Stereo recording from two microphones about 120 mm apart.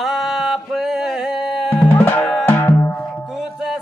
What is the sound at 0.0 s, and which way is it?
Music, centre (ahead or behind).